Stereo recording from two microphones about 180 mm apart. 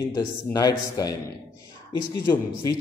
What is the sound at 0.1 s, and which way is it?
A man's voice, 25° left (ahead or behind).